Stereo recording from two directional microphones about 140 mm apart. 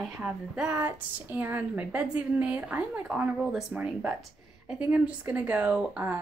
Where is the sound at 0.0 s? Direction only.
5° right (ahead or behind).